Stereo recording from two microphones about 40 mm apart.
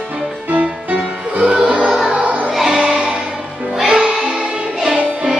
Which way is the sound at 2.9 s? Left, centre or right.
Right.